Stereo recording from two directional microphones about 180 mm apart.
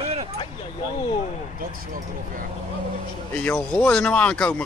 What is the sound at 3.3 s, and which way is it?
Speech, 10° left (ahead or behind).